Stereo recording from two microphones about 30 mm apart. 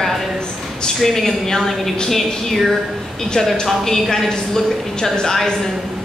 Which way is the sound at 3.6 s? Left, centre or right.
Centre.